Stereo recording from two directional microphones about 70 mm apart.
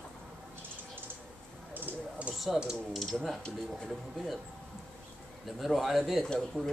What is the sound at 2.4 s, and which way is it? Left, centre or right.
A man's voice, centre.